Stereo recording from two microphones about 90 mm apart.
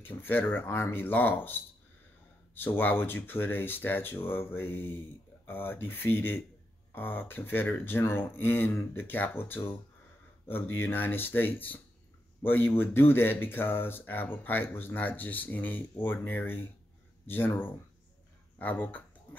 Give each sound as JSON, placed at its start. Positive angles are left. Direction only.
{"t": 0.0, "sound": "speech", "side_deg": 20}